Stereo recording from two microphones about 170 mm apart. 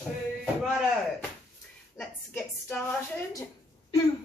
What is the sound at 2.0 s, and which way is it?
Speech, 10° left (ahead or behind).